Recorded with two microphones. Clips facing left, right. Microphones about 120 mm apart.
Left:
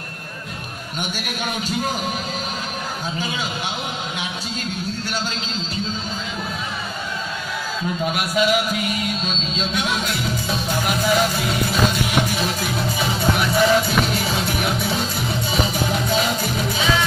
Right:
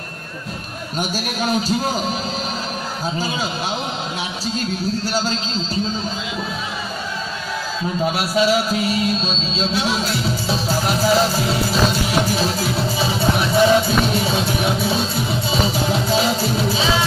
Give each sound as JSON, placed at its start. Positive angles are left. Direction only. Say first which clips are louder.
{"t": 0.9, "sound": "a man's voice", "louder": "right 5 dB", "side_deg": -35}
{"t": 3.2, "sound": "a man's voice", "louder": "right 3 dB", "side_deg": -35}
{"t": 4.6, "sound": "a man's voice", "louder": "right 7 dB", "side_deg": -35}
{"t": 8.0, "sound": "music", "louder": "right 3 dB", "side_deg": -35}